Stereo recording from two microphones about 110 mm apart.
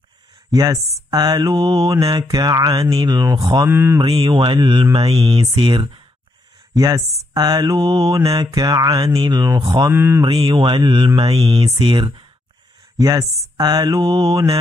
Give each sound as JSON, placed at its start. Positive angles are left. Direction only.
{"t": 0.5, "sound": "speech", "side_deg": -35}
{"t": 1.1, "sound": "mantra", "side_deg": -40}
{"t": 3.3, "sound": "speech", "side_deg": -45}
{"t": 3.6, "sound": "mantra", "side_deg": -20}
{"t": 4.0, "sound": "speech", "side_deg": -50}
{"t": 5.5, "sound": "speech", "side_deg": -45}
{"t": 6.7, "sound": "mantra", "side_deg": -35}
{"t": 9.8, "sound": "mantra", "side_deg": -20}
{"t": 10.2, "sound": "speech", "side_deg": -50}
{"t": 11.6, "sound": "speech", "side_deg": -50}
{"t": 12.9, "sound": "mantra", "side_deg": -35}